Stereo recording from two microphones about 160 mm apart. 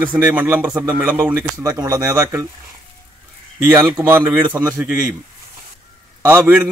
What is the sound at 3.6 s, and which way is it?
Speech, 15° right (ahead or behind).